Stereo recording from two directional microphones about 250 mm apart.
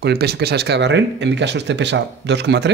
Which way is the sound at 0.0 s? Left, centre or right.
Right.